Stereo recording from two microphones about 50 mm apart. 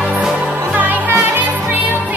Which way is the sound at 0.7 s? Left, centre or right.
Right.